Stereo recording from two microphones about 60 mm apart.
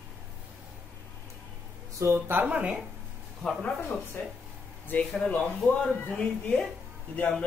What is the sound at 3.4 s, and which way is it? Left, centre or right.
Speech, centre.